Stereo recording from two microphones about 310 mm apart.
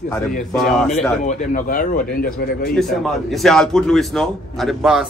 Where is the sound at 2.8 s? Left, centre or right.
Centre.